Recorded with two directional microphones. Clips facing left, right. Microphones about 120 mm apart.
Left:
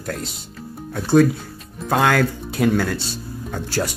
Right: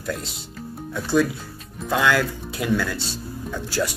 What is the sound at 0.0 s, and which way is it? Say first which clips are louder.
Speech: left 1 dB; 50° left (ahead or behind).